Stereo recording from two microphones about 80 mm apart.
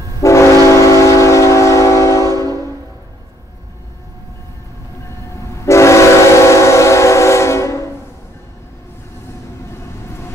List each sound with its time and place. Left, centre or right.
0.2 s train: left
5.4 s train: left
9.7 s vehicle: left